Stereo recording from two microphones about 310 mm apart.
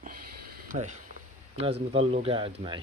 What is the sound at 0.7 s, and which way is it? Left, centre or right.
Speech, right.